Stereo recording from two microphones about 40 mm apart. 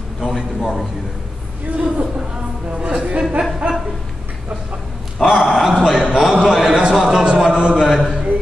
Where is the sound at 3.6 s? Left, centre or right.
Right.